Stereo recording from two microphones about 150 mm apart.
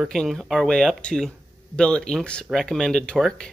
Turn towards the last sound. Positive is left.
turn(degrees=5)  # may be behind; listen again after turning